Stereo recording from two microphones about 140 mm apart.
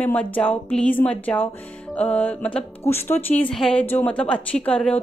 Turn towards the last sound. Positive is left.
turn(degrees=10)  # may be behind; listen again after turning